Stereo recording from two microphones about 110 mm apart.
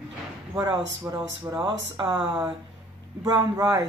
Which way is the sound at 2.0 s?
50° right (ahead or behind).